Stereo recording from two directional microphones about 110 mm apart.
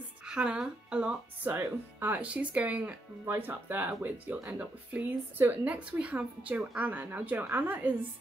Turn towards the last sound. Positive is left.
turn(degrees=-15)  # may be behind; listen again after turning